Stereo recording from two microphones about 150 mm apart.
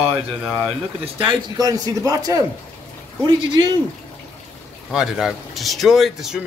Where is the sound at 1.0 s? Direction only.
35° right (ahead or behind).